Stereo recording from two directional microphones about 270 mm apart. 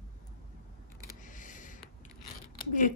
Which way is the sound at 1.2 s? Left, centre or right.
Left.